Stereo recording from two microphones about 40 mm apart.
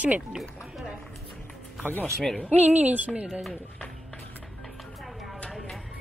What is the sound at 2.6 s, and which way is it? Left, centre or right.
Speech, right.